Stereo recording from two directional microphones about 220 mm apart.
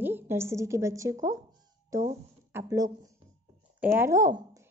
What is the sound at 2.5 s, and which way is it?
A woman's voice, 15° right (ahead or behind).